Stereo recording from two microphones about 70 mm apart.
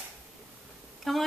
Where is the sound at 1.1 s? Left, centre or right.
Centre.